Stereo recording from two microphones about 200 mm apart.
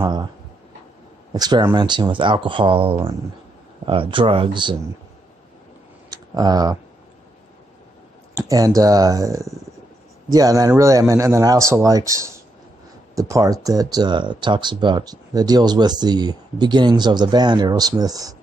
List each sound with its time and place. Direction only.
0.0 s speech: 25° right (ahead or behind)
1.3 s speech: 20° right (ahead or behind)
6.0 s clicking: 20° right (ahead or behind)
8.4 s speech: 20° right (ahead or behind)